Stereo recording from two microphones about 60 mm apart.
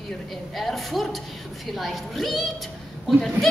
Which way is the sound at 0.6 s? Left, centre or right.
Centre.